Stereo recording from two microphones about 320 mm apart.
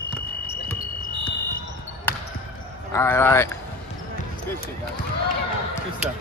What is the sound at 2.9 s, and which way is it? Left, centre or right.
Speech, centre.